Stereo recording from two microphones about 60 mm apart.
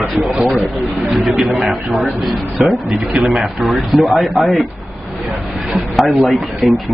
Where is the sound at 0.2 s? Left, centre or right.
Centre.